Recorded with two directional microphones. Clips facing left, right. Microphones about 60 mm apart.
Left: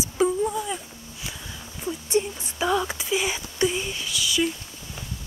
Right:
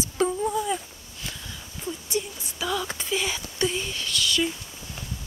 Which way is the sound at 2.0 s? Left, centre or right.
Left.